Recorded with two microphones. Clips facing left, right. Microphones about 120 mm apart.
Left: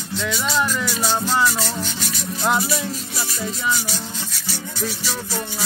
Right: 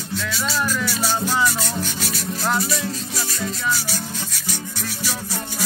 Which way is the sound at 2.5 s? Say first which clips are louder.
Left 2 dB; 25° left (ahead or behind).